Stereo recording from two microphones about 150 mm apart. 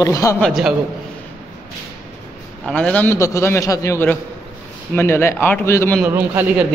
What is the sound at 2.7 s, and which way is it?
A man's voice, 5° left (ahead or behind).